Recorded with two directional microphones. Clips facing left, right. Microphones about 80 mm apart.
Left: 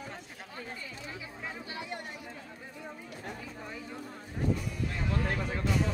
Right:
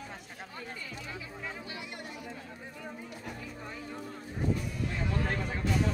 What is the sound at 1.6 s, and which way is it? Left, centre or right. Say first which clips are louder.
Speech: left 3 dB; left.